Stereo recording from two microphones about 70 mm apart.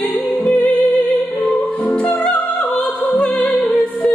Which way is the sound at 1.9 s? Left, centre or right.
Centre.